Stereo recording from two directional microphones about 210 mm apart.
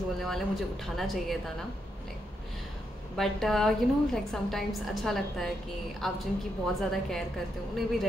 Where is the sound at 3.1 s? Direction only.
Centre (ahead or behind).